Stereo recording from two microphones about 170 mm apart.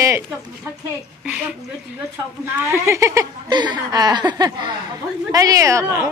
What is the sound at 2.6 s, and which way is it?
A woman's voice, 15° right (ahead or behind).